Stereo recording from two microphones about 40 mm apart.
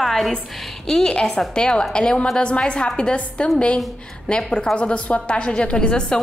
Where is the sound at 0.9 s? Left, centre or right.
Centre.